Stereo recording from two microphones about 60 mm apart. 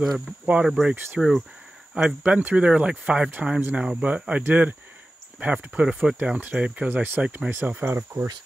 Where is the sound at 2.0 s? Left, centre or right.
Right.